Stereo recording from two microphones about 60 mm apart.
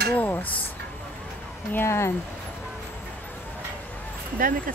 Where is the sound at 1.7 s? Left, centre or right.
Left.